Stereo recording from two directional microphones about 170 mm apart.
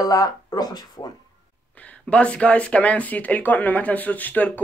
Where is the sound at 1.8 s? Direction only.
5° left (ahead or behind).